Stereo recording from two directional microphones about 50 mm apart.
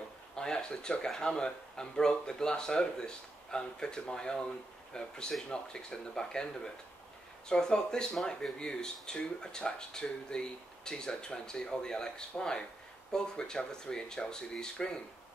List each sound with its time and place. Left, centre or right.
0.4 s speech: centre